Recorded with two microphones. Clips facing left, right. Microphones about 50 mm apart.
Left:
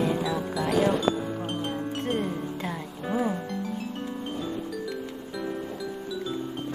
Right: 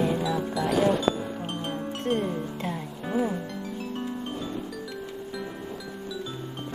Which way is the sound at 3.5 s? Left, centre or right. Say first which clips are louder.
Left 2 dB; centre.